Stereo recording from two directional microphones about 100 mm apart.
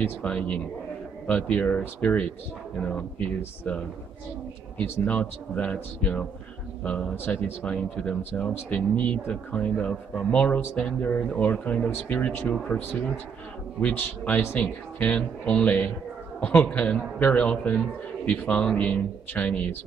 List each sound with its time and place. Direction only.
0.0 s a man's voice: 10° left (ahead or behind)
4.7 s a man's voice: 15° left (ahead or behind)